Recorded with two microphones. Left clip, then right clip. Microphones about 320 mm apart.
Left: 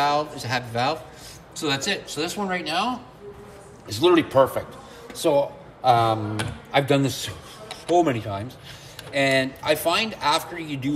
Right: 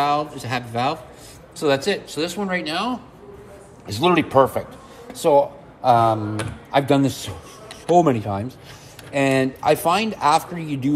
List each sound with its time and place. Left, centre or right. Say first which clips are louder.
0.0 s speech: right 2 dB; centre
3.8 s speech: even; centre